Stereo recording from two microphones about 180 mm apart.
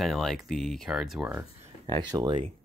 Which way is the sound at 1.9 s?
20° right (ahead or behind).